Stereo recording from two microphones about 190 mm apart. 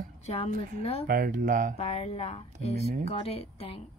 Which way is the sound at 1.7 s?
35° left (ahead or behind).